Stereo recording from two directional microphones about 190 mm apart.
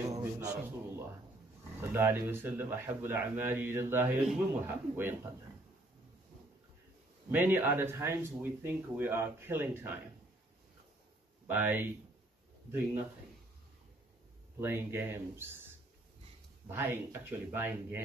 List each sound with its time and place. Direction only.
0.2 s a sound: 15° right (ahead or behind)
1.8 s speech: 10° right (ahead or behind)
7.2 s speech: 10° right (ahead or behind)
11.4 s speech: 10° right (ahead or behind)
14.6 s speech: 10° right (ahead or behind)
16.6 s speech: 10° right (ahead or behind)